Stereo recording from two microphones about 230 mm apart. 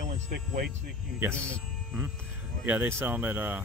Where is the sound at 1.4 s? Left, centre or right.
Centre.